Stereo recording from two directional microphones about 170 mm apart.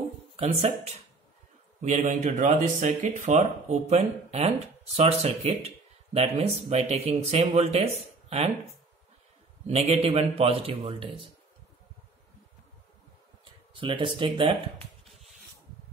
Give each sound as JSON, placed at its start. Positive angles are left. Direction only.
{"t": 0.4, "sound": "speech", "side_deg": -40}
{"t": 9.7, "sound": "speech", "side_deg": -35}
{"t": 13.7, "sound": "speech", "side_deg": -30}